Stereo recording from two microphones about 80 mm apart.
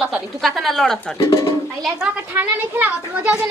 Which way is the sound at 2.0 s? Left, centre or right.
Right.